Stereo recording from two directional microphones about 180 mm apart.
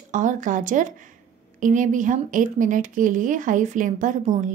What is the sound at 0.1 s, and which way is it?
Speech, 45° right (ahead or behind).